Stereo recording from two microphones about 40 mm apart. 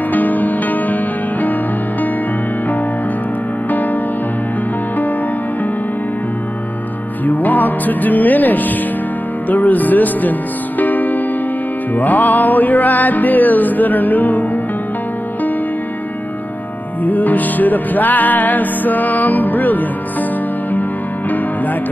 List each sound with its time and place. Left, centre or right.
0.1 s music: left
7.2 s music: left
17.0 s music: left